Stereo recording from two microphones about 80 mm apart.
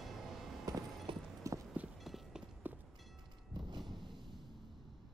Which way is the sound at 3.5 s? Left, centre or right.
Right.